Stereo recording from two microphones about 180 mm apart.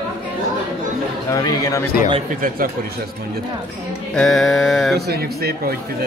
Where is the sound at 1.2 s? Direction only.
15° left (ahead or behind).